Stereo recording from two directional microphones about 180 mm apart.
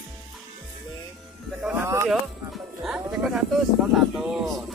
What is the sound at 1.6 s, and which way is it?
Music, 10° right (ahead or behind).